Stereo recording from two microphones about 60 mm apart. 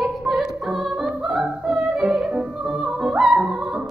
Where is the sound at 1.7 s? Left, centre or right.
Centre.